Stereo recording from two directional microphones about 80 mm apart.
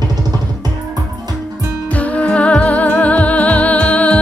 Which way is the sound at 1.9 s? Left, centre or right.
Centre.